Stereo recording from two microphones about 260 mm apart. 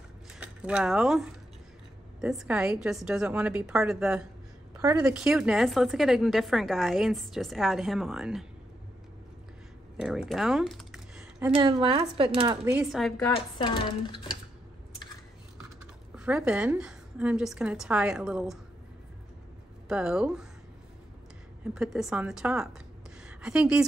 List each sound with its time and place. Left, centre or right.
0.3 s a woman's voice: centre
9.9 s typing: centre
11.5 s speech: centre
12.7 s a woman's voice: centre
13.2 s speech: centre
16.2 s a woman's voice: centre
19.9 s a woman's voice: centre
21.7 s a woman's voice: centre